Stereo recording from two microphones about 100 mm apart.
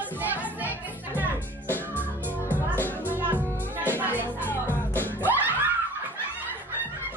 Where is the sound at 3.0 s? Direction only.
20° right (ahead or behind).